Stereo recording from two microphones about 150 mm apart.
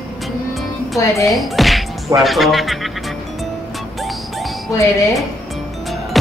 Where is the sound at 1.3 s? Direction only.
Centre (ahead or behind).